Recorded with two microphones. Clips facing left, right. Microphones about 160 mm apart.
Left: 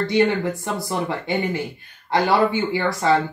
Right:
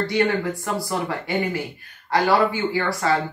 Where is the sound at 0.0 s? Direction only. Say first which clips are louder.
Left 2 dB; 20° left (ahead or behind).